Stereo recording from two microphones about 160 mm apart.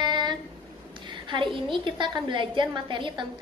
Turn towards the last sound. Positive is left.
turn(degrees=-30)  # may be behind; listen again after turning